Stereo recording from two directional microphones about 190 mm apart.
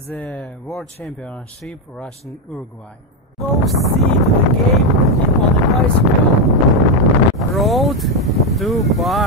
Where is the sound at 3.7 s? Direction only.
Centre (ahead or behind).